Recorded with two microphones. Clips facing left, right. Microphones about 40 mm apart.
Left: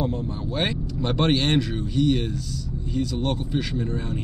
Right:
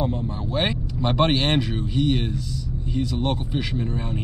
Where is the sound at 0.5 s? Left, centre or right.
Centre.